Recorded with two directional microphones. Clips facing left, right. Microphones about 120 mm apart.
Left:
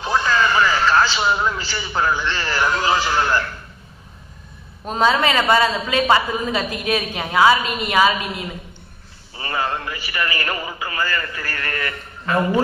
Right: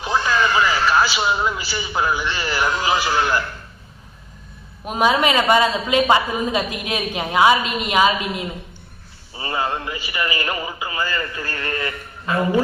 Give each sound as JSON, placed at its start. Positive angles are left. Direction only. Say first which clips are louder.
{"t": 0.0, "sound": "a man's voice", "louder": "left 1 dB", "side_deg": -15}
{"t": 4.8, "sound": "a woman's voice", "louder": "even", "side_deg": -15}